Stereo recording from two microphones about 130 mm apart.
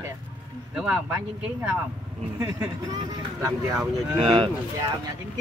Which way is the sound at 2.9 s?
25° right (ahead or behind).